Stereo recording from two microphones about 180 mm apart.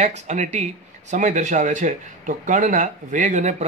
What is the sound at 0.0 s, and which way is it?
Speech, 40° right (ahead or behind).